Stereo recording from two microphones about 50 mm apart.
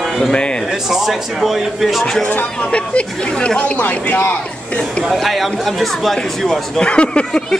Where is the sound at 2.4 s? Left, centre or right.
Left.